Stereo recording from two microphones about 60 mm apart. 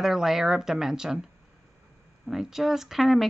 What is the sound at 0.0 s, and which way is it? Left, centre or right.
Speech, centre.